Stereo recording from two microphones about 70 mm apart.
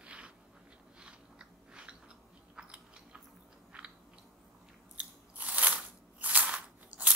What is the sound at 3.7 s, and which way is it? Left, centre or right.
Chewing, centre.